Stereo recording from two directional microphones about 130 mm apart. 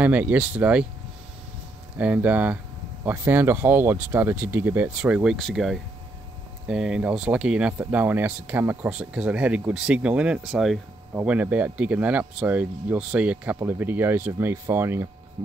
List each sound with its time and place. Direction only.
0.0 s speech: 10° right (ahead or behind)
2.0 s speech: 10° right (ahead or behind)